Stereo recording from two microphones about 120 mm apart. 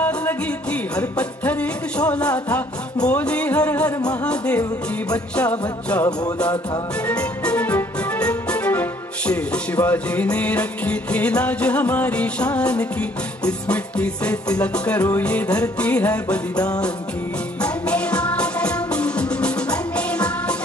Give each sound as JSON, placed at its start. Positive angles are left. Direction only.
{"t": 0.0, "sound": "music", "side_deg": 15}
{"t": 7.1, "sound": "music", "side_deg": 10}
{"t": 17.6, "sound": "music", "side_deg": 10}